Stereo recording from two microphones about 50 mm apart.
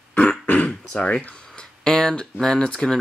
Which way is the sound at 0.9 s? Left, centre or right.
Left.